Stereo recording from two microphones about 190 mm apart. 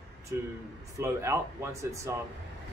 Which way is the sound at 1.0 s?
15° right (ahead or behind).